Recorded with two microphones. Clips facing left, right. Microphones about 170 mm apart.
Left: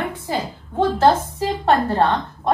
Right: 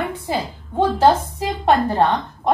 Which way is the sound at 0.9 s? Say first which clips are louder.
Right 1 dB; 15° right (ahead or behind).